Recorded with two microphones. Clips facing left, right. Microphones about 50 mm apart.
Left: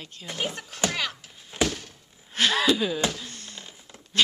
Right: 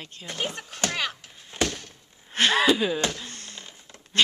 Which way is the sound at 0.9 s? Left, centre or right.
Centre.